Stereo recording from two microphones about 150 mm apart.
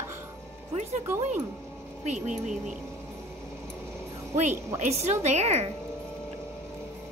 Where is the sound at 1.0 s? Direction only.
15° right (ahead or behind).